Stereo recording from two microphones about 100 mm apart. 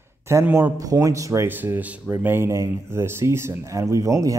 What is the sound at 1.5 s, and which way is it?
Speech, 20° right (ahead or behind).